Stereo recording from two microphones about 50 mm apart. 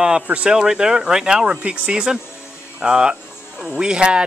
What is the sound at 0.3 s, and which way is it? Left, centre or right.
Speech, right.